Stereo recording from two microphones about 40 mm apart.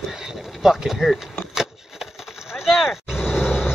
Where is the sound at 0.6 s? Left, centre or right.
Centre.